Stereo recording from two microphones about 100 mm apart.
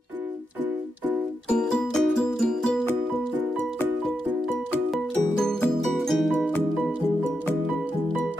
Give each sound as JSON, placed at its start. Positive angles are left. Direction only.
{"t": 1.5, "sound": "music", "side_deg": 5}
{"t": 5.8, "sound": "music", "side_deg": 0}